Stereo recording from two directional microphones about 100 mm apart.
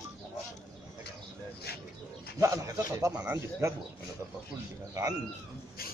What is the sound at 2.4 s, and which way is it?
Speech, 30° right (ahead or behind).